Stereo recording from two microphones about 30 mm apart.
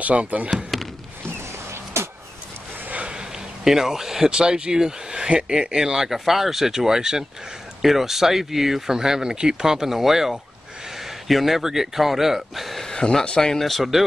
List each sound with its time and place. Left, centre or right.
0.0 s speech: right
2.9 s a sound: right
3.2 s a sound: centre
4.3 s speech: right
5.8 s speech: centre
12.9 s speech: left
13.6 s speech: centre